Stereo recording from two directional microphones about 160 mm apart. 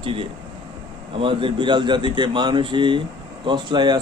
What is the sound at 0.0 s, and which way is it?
Speech, 35° right (ahead or behind).